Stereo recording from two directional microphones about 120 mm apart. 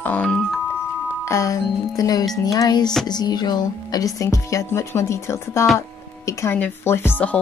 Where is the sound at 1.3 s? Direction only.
30° left (ahead or behind).